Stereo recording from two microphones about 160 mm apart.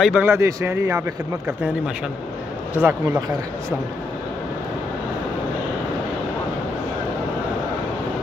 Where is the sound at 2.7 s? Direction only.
15° right (ahead or behind).